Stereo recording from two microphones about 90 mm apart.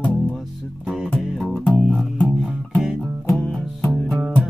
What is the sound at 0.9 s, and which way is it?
Music, centre (ahead or behind).